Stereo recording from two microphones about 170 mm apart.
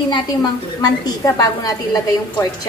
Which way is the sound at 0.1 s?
25° left (ahead or behind).